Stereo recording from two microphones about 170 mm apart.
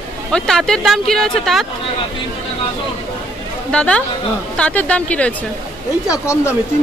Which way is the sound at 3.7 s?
5° left (ahead or behind).